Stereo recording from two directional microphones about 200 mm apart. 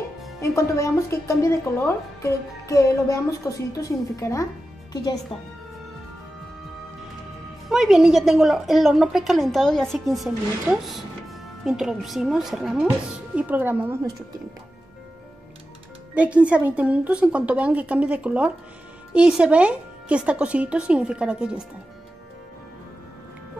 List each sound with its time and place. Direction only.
0.4 s speech: 15° left (ahead or behind)
7.7 s a woman's voice: 5° right (ahead or behind)
16.2 s a woman's voice: 5° right (ahead or behind)